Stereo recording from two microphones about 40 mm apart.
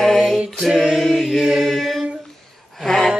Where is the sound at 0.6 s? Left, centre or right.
Centre.